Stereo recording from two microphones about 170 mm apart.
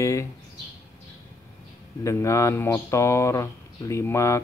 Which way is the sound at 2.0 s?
15° left (ahead or behind).